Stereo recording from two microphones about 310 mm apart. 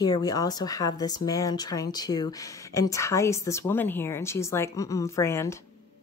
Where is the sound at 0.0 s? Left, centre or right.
Centre.